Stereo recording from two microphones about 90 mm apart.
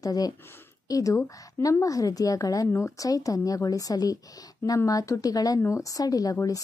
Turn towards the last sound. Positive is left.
turn(degrees=40)  # may be behind; listen again after turning